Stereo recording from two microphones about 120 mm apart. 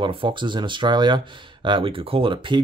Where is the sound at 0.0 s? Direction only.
45° right (ahead or behind).